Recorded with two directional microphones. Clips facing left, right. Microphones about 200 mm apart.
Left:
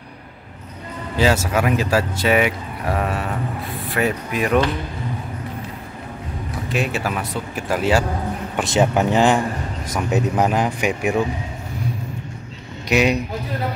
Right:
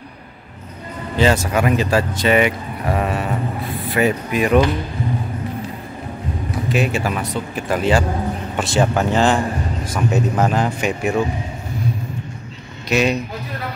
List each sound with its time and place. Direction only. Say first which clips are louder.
1.1 s speech: right 2 dB; 5° left (ahead or behind)
6.7 s speech: right 3 dB; centre (ahead or behind)
8.5 s speech: left 1 dB; 20° left (ahead or behind)
12.8 s a man's voice: even; 15° left (ahead or behind)